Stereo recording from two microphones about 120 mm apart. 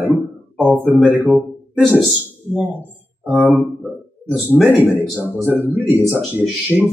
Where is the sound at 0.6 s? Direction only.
15° right (ahead or behind).